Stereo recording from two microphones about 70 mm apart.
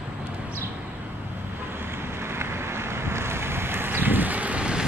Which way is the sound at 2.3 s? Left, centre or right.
Right.